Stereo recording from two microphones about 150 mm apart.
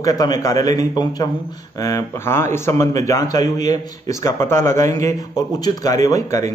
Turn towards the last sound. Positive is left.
turn(degrees=20)  # may be behind; listen again after turning